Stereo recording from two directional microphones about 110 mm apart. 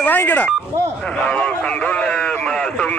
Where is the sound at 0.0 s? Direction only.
15° left (ahead or behind).